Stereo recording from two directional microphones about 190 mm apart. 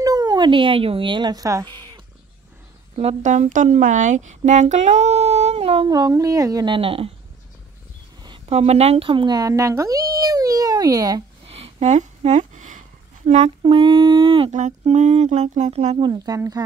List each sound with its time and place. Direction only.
0.0 s speech: 20° right (ahead or behind)
3.0 s speech: 35° right (ahead or behind)
8.2 s speech: 30° right (ahead or behind)
11.4 s speech: 30° right (ahead or behind)
16.1 s speech: 20° right (ahead or behind)